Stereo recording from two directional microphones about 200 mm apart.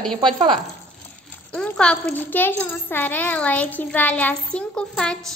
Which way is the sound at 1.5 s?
5° left (ahead or behind).